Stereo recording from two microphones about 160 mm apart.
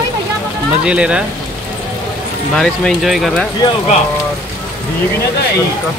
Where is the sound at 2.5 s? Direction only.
5° left (ahead or behind).